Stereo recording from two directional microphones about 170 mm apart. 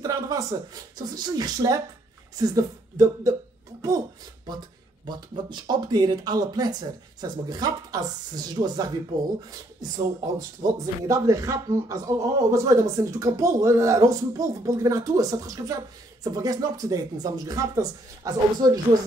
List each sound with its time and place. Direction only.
0.0 s speech: 20° right (ahead or behind)
4.5 s speech: 25° right (ahead or behind)